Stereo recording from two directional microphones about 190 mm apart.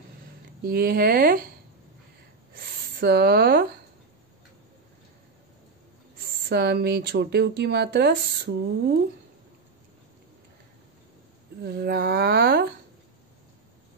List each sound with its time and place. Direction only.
0.7 s speech: 50° right (ahead or behind)
2.5 s speech: 55° right (ahead or behind)
6.2 s speech: 60° right (ahead or behind)
11.6 s speech: 55° right (ahead or behind)